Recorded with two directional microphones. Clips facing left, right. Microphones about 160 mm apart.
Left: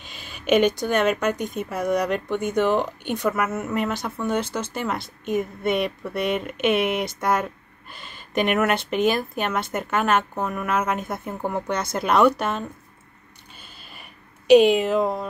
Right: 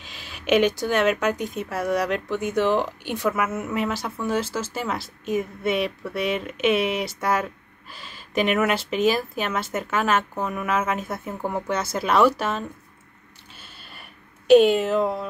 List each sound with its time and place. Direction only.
0.0 s speech: centre (ahead or behind)
6.8 s speech: 55° left (ahead or behind)
7.1 s speech: 5° right (ahead or behind)
8.0 s a sound: 55° left (ahead or behind)
8.4 s speech: 5° right (ahead or behind)
13.6 s a sound: centre (ahead or behind)
14.5 s speech: centre (ahead or behind)